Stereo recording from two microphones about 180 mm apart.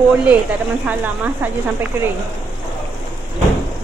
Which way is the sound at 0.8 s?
10° right (ahead or behind).